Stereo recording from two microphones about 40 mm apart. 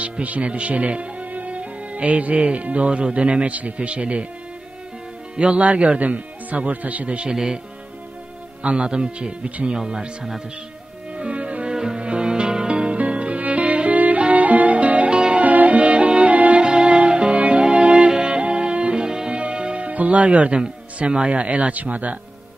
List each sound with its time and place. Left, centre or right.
0.0 s speech: right
5.3 s speech: right
7.2 s speech: centre
8.6 s speech: right
11.1 s music: right
11.7 s music: centre
15.4 s music: right
16.6 s music: right